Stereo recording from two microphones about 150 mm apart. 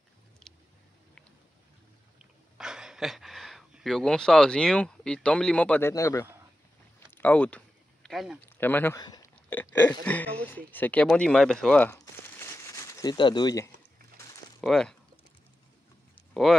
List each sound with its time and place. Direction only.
2.5 s speech: 5° right (ahead or behind); by 6.2 s 20° left (ahead or behind)
7.1 s a sound: 10° left (ahead or behind)
8.5 s speech: 10° left (ahead or behind)
9.0 s a sound: 25° left (ahead or behind)
9.5 s speech: 10° left (ahead or behind)
14.6 s speech: 5° left (ahead or behind)